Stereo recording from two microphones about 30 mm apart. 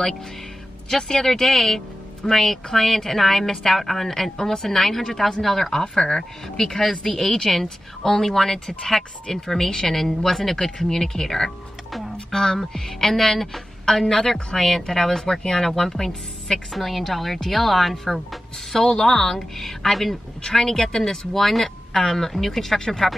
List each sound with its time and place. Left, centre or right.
0.8 s a woman's voice: left
16.7 s a woman's voice: centre
18.9 s a woman's voice: centre
20.4 s a woman's voice: centre